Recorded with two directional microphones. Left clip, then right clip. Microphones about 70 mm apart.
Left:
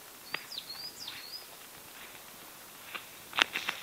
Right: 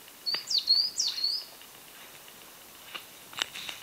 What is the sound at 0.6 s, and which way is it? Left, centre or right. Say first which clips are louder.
Bird: right 16 dB; right.